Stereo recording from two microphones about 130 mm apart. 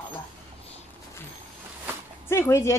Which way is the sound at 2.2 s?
20° left (ahead or behind).